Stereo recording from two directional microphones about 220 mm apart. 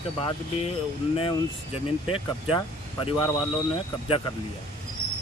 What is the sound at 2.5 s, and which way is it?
Speech, 20° left (ahead or behind).